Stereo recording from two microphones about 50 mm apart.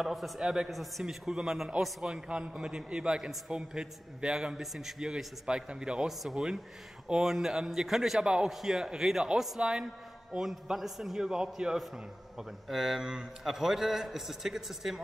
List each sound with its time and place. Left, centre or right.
0.0 s a man's voice: centre
2.0 s a man's voice: centre
8.2 s a man's voice: centre
8.5 s a man's voice: centre